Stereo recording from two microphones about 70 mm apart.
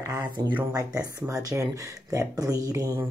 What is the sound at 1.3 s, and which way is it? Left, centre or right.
Speech, right.